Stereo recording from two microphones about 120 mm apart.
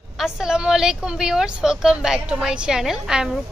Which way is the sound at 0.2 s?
5° right (ahead or behind).